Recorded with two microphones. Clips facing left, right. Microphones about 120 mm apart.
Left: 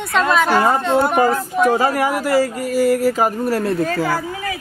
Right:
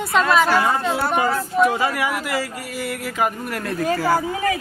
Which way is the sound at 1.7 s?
40° left (ahead or behind).